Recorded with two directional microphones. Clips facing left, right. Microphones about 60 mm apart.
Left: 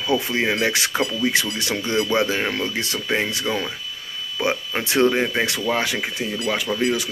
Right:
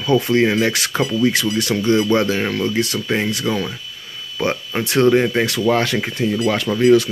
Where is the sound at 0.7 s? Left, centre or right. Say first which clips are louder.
Right 3 dB; left.